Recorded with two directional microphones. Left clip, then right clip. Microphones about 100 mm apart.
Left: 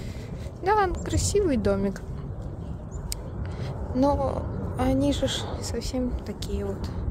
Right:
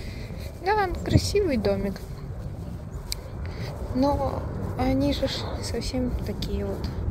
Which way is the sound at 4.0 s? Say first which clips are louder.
Left 1 dB; 50° left (ahead or behind).